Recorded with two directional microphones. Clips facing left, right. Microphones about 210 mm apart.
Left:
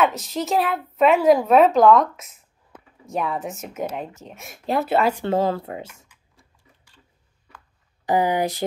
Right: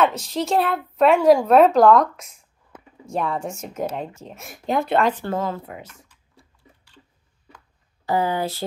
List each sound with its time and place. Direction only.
0.0 s speech: centre (ahead or behind)
5.2 s speech: 30° left (ahead or behind)
8.0 s speech: 15° left (ahead or behind)